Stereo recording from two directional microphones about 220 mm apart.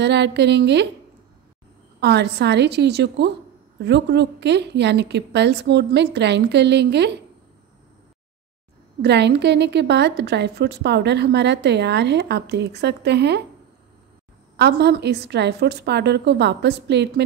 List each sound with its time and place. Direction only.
0.0 s a woman's voice: 50° right (ahead or behind)
2.0 s a woman's voice: 50° right (ahead or behind)
9.0 s a woman's voice: 50° right (ahead or behind)
14.6 s a woman's voice: 45° right (ahead or behind)